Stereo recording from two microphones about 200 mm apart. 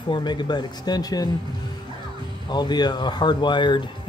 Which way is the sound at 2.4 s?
20° left (ahead or behind).